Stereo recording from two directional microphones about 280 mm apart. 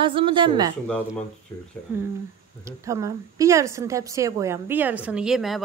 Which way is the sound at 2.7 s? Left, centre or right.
Centre.